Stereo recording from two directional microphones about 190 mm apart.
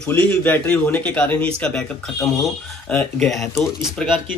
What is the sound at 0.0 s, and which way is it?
A man's voice, 5° left (ahead or behind).